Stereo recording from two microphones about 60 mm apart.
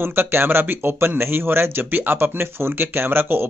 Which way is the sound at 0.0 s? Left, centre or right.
Right.